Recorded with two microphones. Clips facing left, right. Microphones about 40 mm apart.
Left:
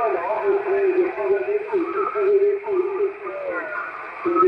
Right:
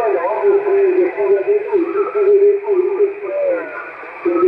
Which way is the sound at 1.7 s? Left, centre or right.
Centre.